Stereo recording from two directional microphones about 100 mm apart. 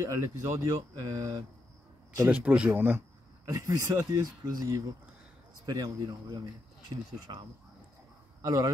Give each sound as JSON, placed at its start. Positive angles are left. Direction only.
{"t": 0.0, "sound": "speech", "side_deg": -30}
{"t": 2.2, "sound": "speech", "side_deg": -15}
{"t": 3.4, "sound": "speech", "side_deg": -35}
{"t": 8.4, "sound": "speech", "side_deg": -35}